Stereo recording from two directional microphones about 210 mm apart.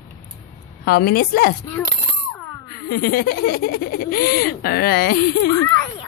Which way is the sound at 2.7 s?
45° left (ahead or behind).